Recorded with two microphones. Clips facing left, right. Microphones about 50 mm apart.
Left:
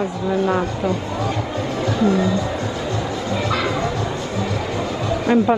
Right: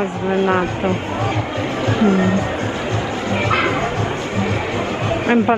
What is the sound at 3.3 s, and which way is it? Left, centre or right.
Music, right.